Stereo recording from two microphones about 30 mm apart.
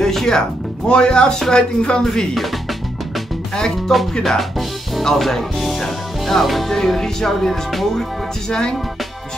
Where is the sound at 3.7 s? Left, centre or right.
Centre.